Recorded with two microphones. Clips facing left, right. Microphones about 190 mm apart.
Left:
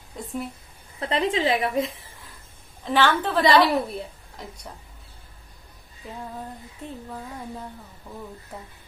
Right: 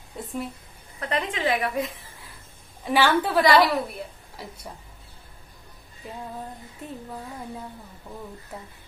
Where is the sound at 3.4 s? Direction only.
25° left (ahead or behind).